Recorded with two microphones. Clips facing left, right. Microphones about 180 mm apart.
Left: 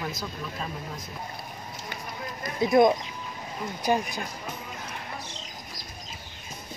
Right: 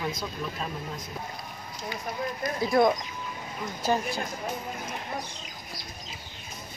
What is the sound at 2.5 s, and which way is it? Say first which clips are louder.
Speech: left 3 dB; 20° left (ahead or behind).